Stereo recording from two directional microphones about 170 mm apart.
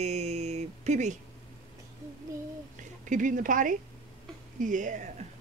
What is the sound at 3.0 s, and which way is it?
Speech, 50° right (ahead or behind).